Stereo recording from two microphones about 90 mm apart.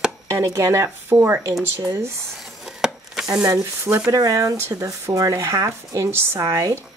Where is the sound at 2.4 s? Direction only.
Centre (ahead or behind).